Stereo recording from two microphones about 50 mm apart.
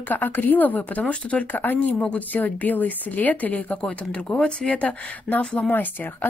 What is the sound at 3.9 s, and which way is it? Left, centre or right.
Speech, left.